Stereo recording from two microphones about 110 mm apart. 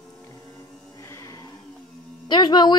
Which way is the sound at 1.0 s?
30° left (ahead or behind).